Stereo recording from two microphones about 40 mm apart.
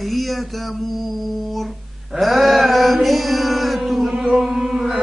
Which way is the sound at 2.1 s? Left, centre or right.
Centre.